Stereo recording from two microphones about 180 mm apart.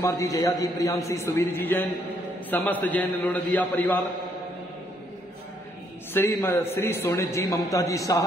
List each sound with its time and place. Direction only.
0.0 s a man's voice: 15° left (ahead or behind)
6.1 s a man's voice: 15° left (ahead or behind)